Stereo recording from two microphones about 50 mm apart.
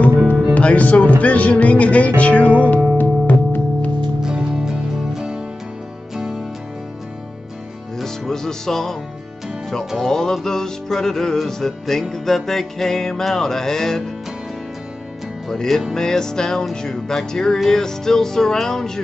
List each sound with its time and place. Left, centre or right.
0.6 s music: left
2.4 s music: right
3.0 s music: left
4.2 s music: centre
8.0 s music: centre
9.9 s music: centre
15.4 s music: centre